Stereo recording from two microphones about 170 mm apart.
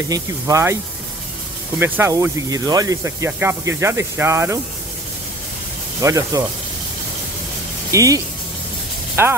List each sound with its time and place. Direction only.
0.1 s speech: 20° right (ahead or behind)
1.8 s speech: 15° right (ahead or behind)
5.9 s speech: 20° right (ahead or behind)
7.9 s speech: 20° right (ahead or behind)